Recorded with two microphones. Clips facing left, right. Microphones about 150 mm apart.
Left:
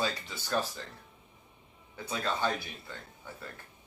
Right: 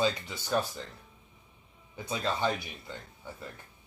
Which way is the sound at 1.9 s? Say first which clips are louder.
Right 1 dB; 20° right (ahead or behind).